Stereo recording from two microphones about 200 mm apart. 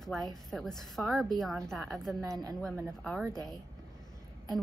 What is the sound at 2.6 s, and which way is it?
Speech, 5° right (ahead or behind).